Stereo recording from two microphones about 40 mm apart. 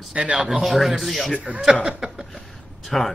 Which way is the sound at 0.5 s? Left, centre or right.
Centre.